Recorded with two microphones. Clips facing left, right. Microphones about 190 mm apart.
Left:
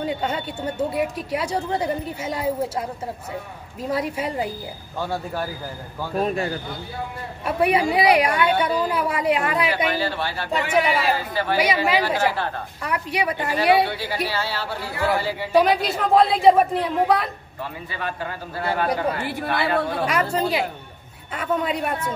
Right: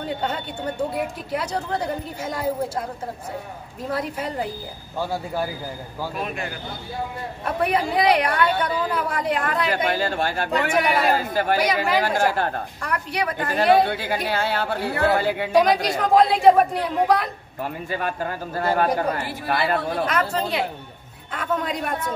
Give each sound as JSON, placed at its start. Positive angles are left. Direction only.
{"t": 0.1, "sound": "a woman's voice", "side_deg": 5}
{"t": 3.9, "sound": "a woman's voice", "side_deg": 10}
{"t": 4.9, "sound": "speech", "side_deg": -10}
{"t": 6.1, "sound": "a man's voice", "side_deg": 35}
{"t": 7.4, "sound": "a woman's voice", "side_deg": 10}
{"t": 9.8, "sound": "speech", "side_deg": -50}
{"t": 11.6, "sound": "a woman's voice", "side_deg": 10}
{"t": 12.2, "sound": "speech", "side_deg": -45}
{"t": 12.8, "sound": "a woman's voice", "side_deg": 5}
{"t": 13.6, "sound": "a woman's voice", "side_deg": -50}
{"t": 16.0, "sound": "a woman's voice", "side_deg": 0}
{"t": 17.8, "sound": "speech", "side_deg": -45}
{"t": 20.3, "sound": "a woman's voice", "side_deg": 5}